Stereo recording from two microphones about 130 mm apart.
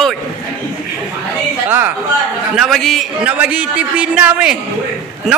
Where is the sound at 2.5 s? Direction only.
Centre (ahead or behind).